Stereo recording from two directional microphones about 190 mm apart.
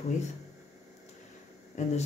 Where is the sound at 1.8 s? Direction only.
40° left (ahead or behind).